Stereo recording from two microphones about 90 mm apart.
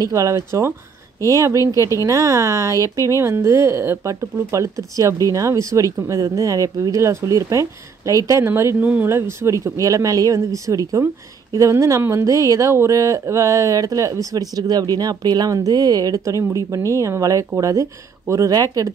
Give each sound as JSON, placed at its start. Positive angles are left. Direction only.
{"t": 0.0, "sound": "speech", "side_deg": -35}